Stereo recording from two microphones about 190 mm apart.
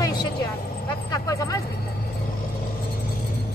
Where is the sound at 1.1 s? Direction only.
15° left (ahead or behind).